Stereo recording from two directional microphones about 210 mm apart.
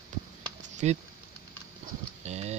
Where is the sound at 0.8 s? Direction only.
35° right (ahead or behind).